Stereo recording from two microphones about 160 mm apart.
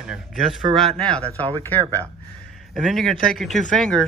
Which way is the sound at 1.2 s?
35° right (ahead or behind).